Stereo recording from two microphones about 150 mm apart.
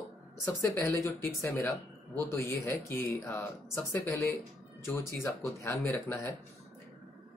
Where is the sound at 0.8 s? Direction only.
20° left (ahead or behind).